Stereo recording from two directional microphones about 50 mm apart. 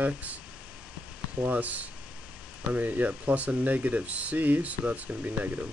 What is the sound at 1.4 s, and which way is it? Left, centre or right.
Speech, right.